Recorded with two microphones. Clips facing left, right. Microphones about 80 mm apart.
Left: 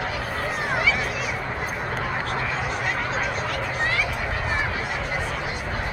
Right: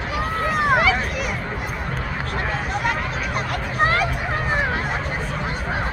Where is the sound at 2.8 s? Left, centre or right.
Right.